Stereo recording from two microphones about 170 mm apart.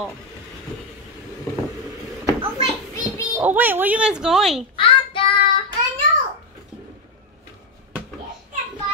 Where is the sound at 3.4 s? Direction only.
10° right (ahead or behind).